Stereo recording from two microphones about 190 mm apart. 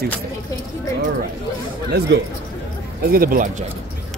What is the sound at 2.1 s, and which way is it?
Speech, 70° right (ahead or behind).